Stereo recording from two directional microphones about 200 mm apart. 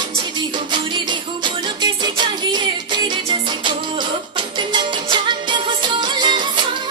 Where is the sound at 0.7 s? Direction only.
25° right (ahead or behind).